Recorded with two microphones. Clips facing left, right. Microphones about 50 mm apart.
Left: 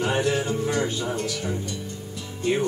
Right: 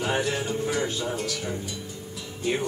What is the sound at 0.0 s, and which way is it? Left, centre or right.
Music, centre.